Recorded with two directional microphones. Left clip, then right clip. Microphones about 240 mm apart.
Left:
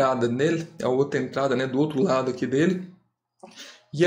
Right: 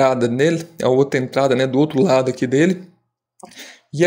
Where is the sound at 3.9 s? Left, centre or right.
Right.